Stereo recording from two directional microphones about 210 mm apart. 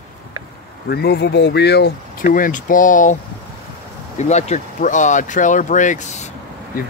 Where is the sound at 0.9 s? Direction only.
50° left (ahead or behind).